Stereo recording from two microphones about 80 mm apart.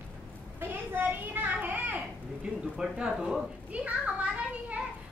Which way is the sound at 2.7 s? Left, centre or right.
Centre.